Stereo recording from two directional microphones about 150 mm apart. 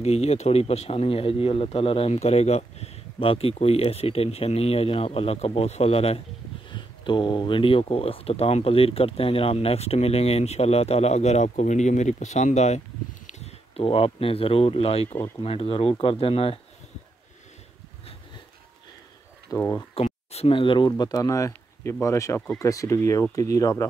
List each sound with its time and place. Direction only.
0.0 s speech: 45° left (ahead or behind)
6.7 s speech: 30° left (ahead or behind)
19.5 s speech: 20° left (ahead or behind)
20.3 s speech: 35° left (ahead or behind)
20.9 s speech: 20° left (ahead or behind)